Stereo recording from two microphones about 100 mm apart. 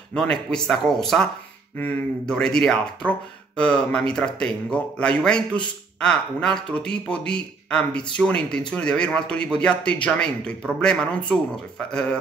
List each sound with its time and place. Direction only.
0.1 s speech: 10° left (ahead or behind)
1.8 s speech: 20° left (ahead or behind)
2.2 s speech: 10° left (ahead or behind)